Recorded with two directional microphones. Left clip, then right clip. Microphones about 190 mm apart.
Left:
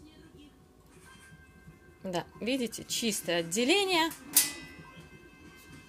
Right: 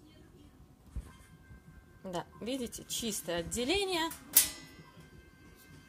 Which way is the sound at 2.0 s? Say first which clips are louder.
Left 5 dB; 5° left (ahead or behind).